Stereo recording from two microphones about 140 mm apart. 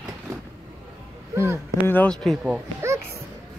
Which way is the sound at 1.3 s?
15° right (ahead or behind).